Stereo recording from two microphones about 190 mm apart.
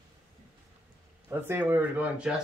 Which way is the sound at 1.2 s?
10° right (ahead or behind).